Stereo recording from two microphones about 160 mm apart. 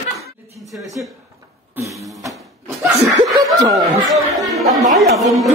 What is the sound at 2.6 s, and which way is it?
Laughter, 20° right (ahead or behind).